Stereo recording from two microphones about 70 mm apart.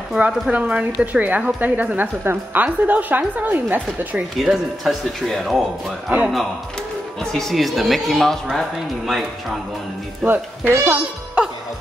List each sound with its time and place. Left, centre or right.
0.2 s speech: centre
4.4 s a woman's voice: centre
7.2 s a woman's voice: centre
10.2 s speech: right
10.7 s a child's voice: right